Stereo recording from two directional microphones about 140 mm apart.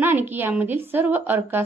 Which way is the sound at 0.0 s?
15° right (ahead or behind).